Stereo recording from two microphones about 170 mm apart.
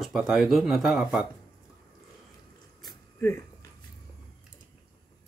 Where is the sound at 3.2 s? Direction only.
15° left (ahead or behind).